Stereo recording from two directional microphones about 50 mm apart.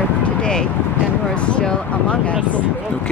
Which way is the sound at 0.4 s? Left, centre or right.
Centre.